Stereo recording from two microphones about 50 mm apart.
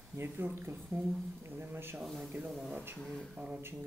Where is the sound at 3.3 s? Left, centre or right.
Centre.